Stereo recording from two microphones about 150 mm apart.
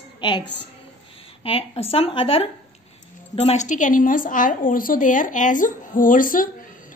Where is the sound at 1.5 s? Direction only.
40° left (ahead or behind).